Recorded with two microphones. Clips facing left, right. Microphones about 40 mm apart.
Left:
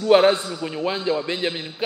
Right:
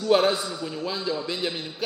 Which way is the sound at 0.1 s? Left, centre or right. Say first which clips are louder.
Left 5 dB; left.